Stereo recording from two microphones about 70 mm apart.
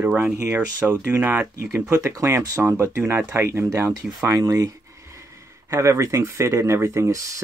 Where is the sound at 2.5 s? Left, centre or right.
Right.